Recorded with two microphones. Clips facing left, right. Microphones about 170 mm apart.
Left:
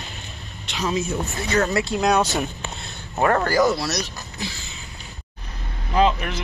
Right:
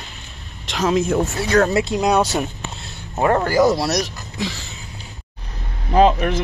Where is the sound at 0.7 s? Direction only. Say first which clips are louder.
Right 6 dB; 90° right.